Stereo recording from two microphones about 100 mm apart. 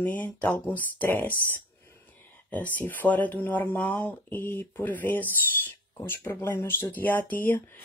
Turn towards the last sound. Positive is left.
turn(degrees=20)  # may be behind; listen again after turning